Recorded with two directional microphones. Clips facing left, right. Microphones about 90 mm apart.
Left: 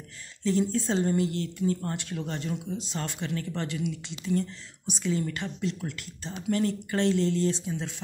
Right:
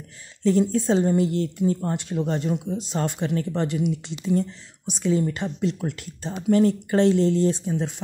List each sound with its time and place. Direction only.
0.4 s speech: 45° right (ahead or behind)
1.0 s speech: 25° right (ahead or behind)
5.6 s speech: 40° right (ahead or behind)